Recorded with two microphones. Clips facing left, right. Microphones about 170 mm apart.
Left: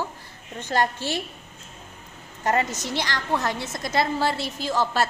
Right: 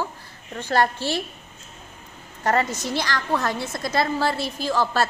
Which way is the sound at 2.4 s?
20° left (ahead or behind).